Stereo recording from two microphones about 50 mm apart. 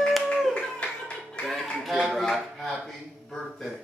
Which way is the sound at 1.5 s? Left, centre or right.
Centre.